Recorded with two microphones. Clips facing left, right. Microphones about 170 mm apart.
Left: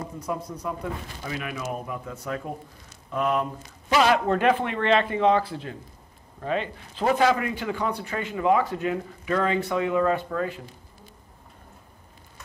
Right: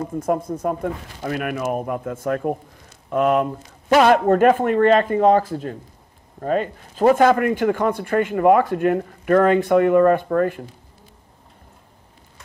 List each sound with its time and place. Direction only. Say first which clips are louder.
0.1 s a man's voice: right 9 dB; 50° right (ahead or behind)